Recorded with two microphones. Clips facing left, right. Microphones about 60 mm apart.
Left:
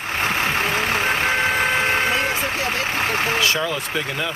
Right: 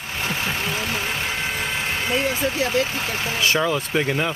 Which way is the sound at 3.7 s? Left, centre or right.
Right.